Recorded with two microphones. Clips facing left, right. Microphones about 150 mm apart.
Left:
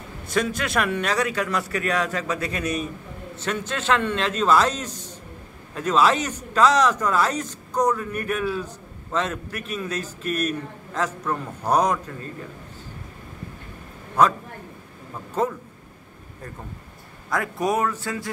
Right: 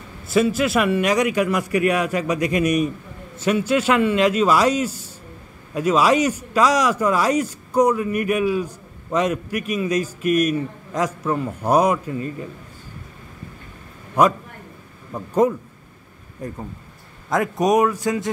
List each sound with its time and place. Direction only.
0.3 s a man's voice: 5° right (ahead or behind)
14.2 s a man's voice: 15° right (ahead or behind)
17.3 s a man's voice: 20° right (ahead or behind)